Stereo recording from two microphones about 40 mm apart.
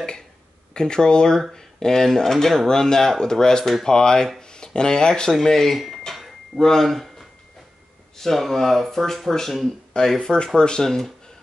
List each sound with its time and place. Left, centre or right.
0.7 s speech: centre
5.4 s speech: centre
6.1 s drawer open or close: centre
6.6 s speech: centre